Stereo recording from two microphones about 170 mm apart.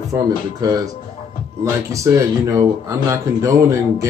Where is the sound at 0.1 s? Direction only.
20° right (ahead or behind).